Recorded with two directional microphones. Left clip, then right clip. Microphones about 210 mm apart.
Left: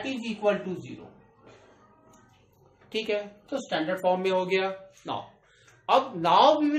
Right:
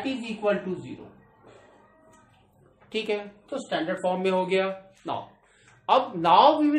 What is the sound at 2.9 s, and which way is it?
A woman's voice, 10° right (ahead or behind).